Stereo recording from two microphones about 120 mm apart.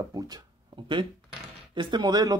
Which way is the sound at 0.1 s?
30° right (ahead or behind).